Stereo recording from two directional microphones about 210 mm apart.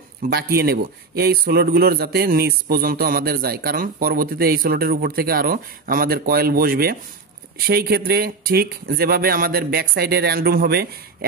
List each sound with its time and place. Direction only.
0.2 s a man's voice: 45° right (ahead or behind)